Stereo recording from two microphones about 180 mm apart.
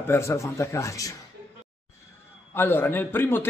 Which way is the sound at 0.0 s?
15° left (ahead or behind).